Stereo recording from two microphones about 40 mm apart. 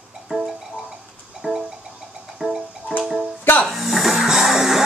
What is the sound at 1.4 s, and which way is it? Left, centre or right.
Music, right.